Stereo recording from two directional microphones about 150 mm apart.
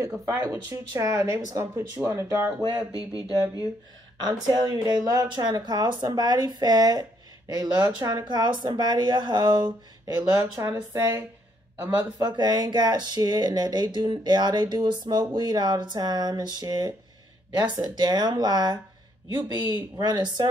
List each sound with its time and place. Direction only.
0.2 s speech: 20° right (ahead or behind)
2.7 s speech: 5° right (ahead or behind)
4.2 s speech: 25° right (ahead or behind)